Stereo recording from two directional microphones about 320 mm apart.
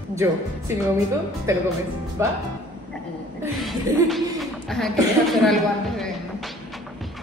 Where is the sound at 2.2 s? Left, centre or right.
Centre.